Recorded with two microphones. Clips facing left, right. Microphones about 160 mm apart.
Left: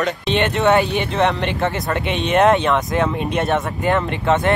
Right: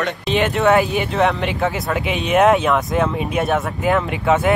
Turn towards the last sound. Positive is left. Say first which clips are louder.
# right 1 dB
turn(degrees=-5)  # may be behind; listen again after turning